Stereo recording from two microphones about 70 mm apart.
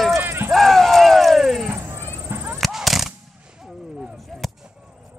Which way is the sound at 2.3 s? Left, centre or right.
Right.